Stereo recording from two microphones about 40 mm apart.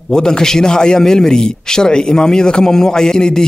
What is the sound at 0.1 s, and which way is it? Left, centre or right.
A man's voice, centre.